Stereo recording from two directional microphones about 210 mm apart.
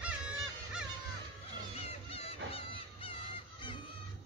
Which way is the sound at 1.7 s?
25° left (ahead or behind).